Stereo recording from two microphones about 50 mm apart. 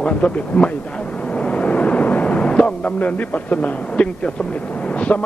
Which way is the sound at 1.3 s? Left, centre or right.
Left.